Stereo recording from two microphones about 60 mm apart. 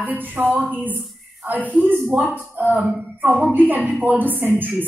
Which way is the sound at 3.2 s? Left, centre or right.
Right.